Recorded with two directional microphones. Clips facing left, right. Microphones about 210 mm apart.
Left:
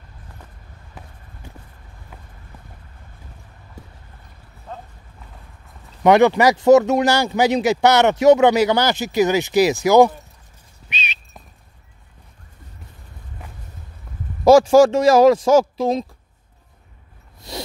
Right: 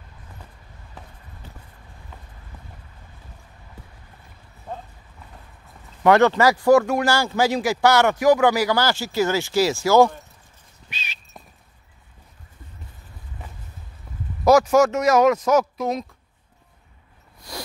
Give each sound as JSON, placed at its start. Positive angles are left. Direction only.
{"t": 1.4, "sound": "vehicle", "side_deg": 10}
{"t": 4.7, "sound": "vehicle", "side_deg": -10}
{"t": 6.0, "sound": "speech", "side_deg": 15}
{"t": 10.9, "sound": "a sound", "side_deg": 20}
{"t": 14.1, "sound": "a sound", "side_deg": 0}
{"t": 14.4, "sound": "speech", "side_deg": 30}